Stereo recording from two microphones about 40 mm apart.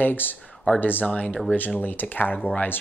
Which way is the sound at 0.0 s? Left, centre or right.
Left.